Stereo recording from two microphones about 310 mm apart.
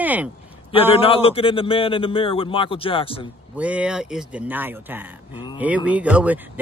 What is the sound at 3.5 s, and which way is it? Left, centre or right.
Speech, centre.